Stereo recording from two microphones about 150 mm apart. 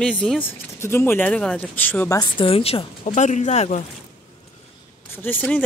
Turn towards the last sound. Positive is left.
turn(degrees=10)  # may be behind; listen again after turning